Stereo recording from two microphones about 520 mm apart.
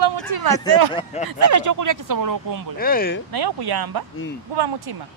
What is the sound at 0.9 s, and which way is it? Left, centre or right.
Speech, centre.